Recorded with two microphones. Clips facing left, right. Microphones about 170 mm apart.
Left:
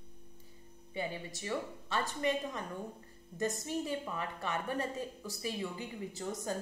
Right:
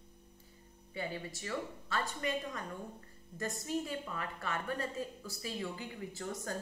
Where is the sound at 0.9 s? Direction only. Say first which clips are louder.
Left 1 dB; 20° left (ahead or behind).